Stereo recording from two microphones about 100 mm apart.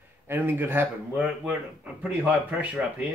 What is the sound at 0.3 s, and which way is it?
Speech, 20° right (ahead or behind).